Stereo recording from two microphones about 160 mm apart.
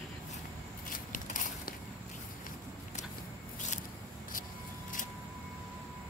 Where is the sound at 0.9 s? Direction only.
55° left (ahead or behind).